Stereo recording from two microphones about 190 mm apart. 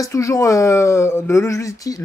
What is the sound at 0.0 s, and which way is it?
Speech, 15° left (ahead or behind).